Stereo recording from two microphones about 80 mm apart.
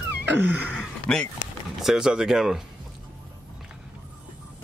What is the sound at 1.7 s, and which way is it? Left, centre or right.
Speech, centre.